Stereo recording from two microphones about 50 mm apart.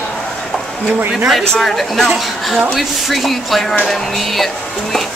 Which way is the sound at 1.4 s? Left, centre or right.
Centre.